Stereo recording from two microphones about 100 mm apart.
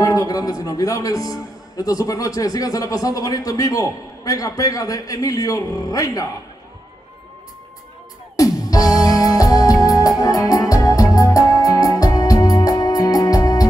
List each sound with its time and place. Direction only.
0.0 s a man's voice: 35° left (ahead or behind)
8.4 s music: 35° left (ahead or behind)